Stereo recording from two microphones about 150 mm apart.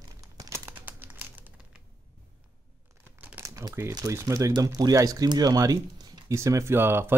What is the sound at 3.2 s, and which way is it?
Speech, 15° right (ahead or behind).